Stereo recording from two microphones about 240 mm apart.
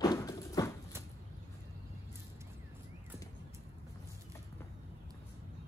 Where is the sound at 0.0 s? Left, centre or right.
Centre.